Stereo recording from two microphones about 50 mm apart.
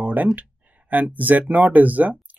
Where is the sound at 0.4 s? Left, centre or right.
Right.